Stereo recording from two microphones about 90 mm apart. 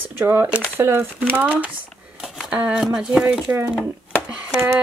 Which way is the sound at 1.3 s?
15° right (ahead or behind).